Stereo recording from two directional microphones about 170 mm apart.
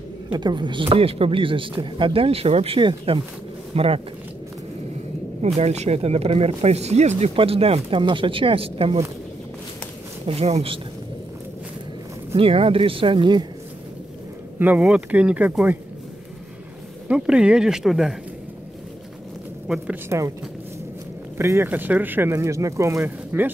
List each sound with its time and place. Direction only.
0.3 s speech: 25° right (ahead or behind)
5.4 s speech: 40° right (ahead or behind)
10.2 s speech: 35° right (ahead or behind)
12.4 s speech: 35° right (ahead or behind)
14.6 s speech: 10° right (ahead or behind)
17.1 s speech: 5° right (ahead or behind)
20.1 s speech: 20° right (ahead or behind)
21.4 s speech: 15° right (ahead or behind)